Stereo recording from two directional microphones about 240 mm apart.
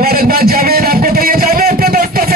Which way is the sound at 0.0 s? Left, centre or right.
Right.